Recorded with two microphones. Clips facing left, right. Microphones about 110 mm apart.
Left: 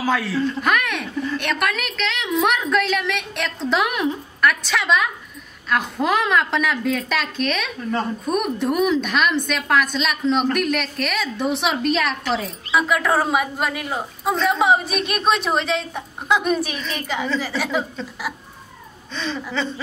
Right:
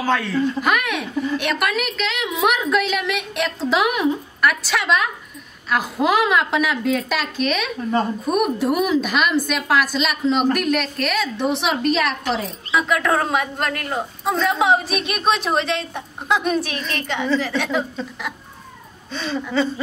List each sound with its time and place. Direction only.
0.0 s a woman's voice: 5° left (ahead or behind)